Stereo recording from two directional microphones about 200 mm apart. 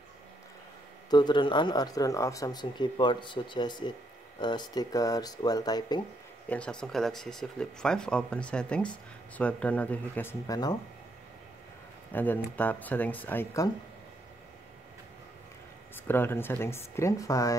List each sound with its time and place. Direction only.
1.1 s speech: 20° left (ahead or behind)
6.5 s speech: 5° left (ahead or behind)
12.1 s speech: 10° left (ahead or behind)
16.1 s speech: 10° left (ahead or behind)